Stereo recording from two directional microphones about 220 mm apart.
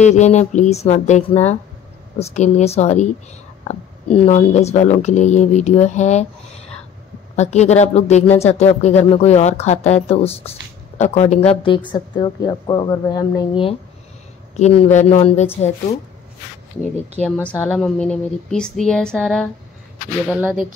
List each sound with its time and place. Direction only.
0.0 s a woman's voice: 30° left (ahead or behind)
17.2 s speech: 5° left (ahead or behind)